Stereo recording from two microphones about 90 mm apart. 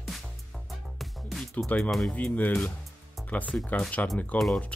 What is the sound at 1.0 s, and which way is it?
Music, centre (ahead or behind).